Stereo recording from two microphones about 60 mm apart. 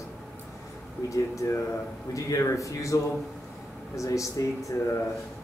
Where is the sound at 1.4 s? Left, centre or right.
Left.